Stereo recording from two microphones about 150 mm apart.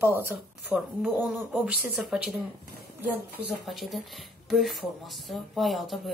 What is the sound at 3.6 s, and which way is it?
Speech, centre (ahead or behind).